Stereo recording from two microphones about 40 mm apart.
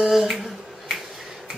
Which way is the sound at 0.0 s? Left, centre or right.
Centre.